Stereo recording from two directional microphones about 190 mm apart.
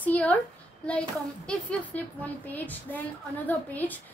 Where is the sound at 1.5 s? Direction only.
5° left (ahead or behind).